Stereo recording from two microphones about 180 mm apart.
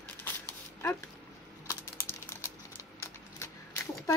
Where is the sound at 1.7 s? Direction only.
15° left (ahead or behind).